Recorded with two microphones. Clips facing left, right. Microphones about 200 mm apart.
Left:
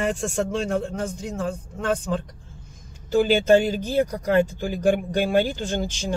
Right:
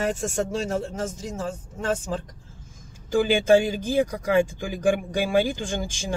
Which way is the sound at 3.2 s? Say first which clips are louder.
Left 1 dB; 10° right (ahead or behind).